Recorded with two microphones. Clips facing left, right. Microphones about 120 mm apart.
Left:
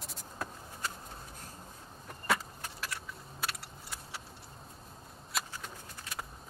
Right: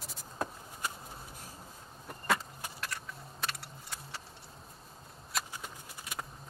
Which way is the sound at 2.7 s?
Centre (ahead or behind).